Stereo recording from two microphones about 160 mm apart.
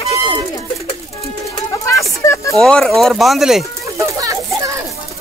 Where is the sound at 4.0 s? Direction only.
20° right (ahead or behind).